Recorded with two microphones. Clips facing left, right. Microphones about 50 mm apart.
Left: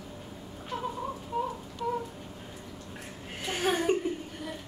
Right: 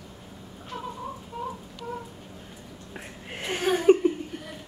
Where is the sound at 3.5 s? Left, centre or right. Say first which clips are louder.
Right 3 dB; centre.